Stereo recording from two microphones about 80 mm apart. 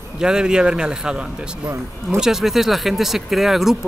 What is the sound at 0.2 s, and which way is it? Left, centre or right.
Speech, centre.